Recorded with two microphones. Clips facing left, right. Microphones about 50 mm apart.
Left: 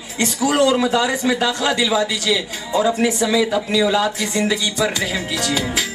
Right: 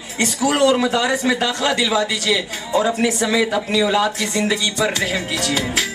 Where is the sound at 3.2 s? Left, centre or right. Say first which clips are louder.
Left 1 dB; centre.